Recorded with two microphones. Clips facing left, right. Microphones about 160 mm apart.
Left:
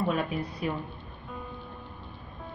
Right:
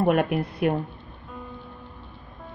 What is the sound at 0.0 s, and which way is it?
Speech, 65° right (ahead or behind).